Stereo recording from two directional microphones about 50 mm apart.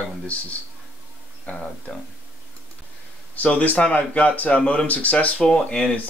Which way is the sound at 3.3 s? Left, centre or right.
Left.